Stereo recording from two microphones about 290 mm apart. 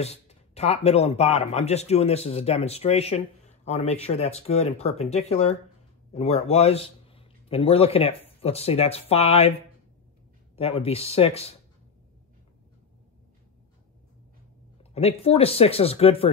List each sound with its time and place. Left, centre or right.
0.0 s a man's voice: left
10.5 s speech: centre
14.8 s speech: left